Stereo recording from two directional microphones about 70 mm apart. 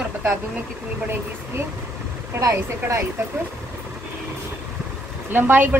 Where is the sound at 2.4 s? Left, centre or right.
Right.